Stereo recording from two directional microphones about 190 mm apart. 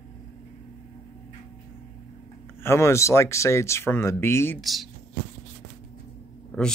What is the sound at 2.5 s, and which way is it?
A man's voice, 15° left (ahead or behind).